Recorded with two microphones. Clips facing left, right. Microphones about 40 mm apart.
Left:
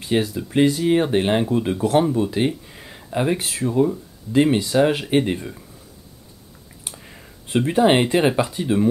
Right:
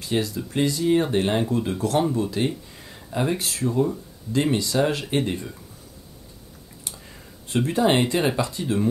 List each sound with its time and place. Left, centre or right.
0.0 s speech: left
6.8 s speech: left